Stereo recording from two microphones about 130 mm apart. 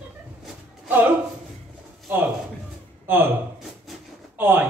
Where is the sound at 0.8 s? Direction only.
15° right (ahead or behind).